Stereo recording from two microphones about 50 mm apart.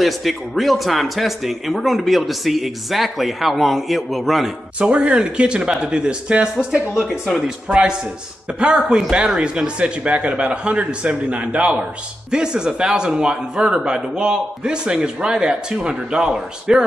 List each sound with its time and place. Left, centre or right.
0.0 s speech: centre
4.7 s speech: right
6.9 s a man's voice: centre
8.5 s a man's voice: right
9.8 s a man's voice: right